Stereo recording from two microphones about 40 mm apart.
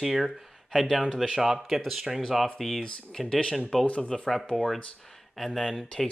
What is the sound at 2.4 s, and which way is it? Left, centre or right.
Speech, centre.